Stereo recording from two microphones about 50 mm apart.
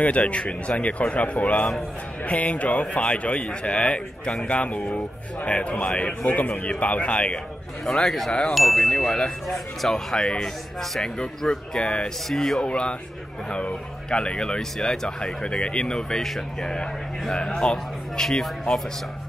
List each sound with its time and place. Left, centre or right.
0.0 s a man's voice: left
7.8 s speech: centre
8.5 s chime: centre
9.5 s a man's voice: centre